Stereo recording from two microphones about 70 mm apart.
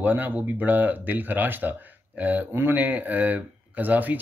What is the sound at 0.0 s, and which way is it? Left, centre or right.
Speech, right.